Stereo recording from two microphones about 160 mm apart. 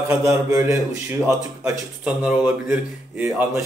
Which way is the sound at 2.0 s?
5° right (ahead or behind).